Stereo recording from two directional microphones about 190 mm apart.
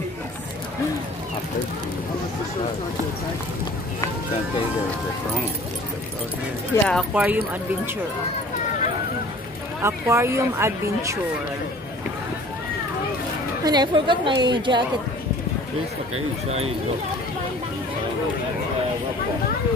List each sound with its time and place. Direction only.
6.7 s speech: 5° left (ahead or behind)
7.2 s speech: 10° right (ahead or behind)
9.8 s speech: 15° right (ahead or behind)
13.7 s a woman's voice: 25° right (ahead or behind)
16.4 s speech: 35° right (ahead or behind)